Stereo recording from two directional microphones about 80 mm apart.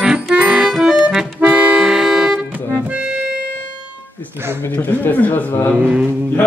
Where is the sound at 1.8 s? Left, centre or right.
Centre.